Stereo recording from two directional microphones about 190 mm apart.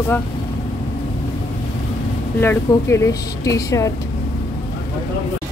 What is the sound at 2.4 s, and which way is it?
Speech, 10° left (ahead or behind).